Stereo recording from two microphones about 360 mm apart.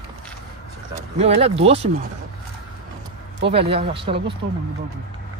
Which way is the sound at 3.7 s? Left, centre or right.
Centre.